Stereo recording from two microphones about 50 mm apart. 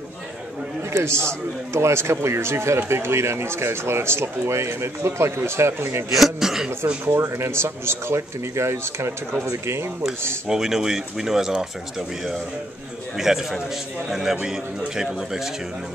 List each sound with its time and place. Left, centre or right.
0.9 s speech: right
6.1 s speech: centre
7.2 s speech: right
10.0 s speech: centre
13.2 s speech: centre